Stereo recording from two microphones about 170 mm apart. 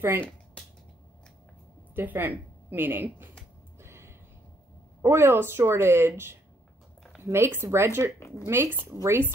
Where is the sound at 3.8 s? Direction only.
15° right (ahead or behind).